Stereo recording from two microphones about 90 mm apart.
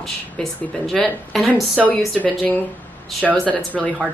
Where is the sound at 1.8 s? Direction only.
15° left (ahead or behind).